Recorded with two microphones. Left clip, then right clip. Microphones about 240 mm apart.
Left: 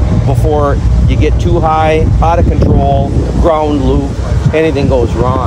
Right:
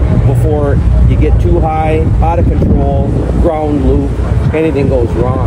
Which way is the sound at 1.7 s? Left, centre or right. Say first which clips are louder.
Left 3 dB; left.